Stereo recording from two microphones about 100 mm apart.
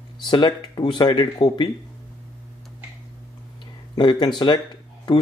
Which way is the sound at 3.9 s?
45° left (ahead or behind).